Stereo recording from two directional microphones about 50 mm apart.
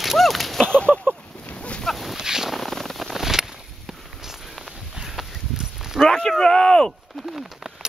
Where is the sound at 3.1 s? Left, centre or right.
Centre.